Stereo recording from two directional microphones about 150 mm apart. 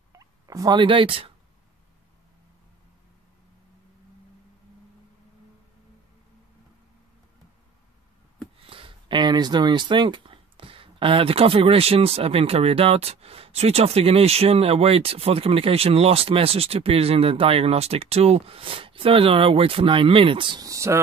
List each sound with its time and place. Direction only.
0.1 s fowl: 25° right (ahead or behind)
8.6 s speech: 35° right (ahead or behind); by 21.0 s 20° right (ahead or behind)